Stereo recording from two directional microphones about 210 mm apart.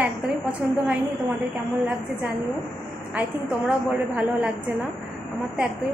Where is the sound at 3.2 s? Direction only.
5° right (ahead or behind).